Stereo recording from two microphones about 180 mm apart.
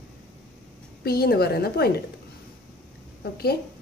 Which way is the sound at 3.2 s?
60° left (ahead or behind).